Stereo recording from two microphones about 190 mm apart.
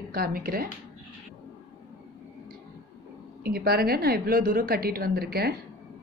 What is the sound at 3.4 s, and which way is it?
A woman's voice, 55° right (ahead or behind).